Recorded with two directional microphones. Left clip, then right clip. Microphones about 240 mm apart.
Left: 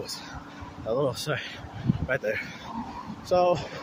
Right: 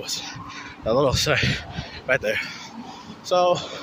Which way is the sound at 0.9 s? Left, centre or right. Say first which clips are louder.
Right 7 dB; centre.